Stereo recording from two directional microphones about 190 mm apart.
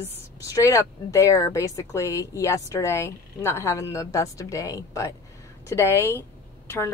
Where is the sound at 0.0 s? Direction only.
15° left (ahead or behind).